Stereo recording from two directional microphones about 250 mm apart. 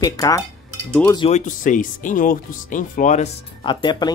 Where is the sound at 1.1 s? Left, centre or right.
Centre.